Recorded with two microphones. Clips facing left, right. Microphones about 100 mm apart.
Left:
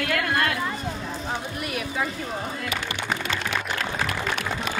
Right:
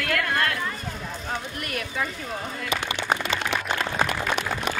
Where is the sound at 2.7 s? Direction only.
20° right (ahead or behind).